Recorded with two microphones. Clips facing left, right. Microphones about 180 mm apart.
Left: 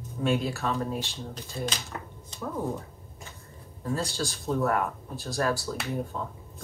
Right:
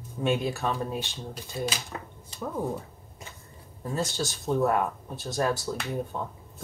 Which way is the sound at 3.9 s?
20° right (ahead or behind).